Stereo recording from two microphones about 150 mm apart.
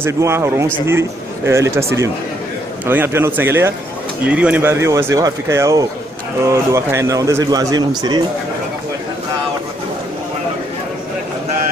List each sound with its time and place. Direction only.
0.0 s a man's voice: 20° right (ahead or behind)